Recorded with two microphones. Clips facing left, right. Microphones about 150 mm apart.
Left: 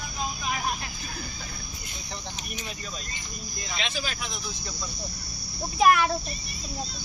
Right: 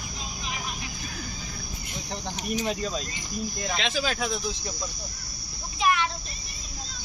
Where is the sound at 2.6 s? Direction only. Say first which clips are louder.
Right 12 dB; 90° right.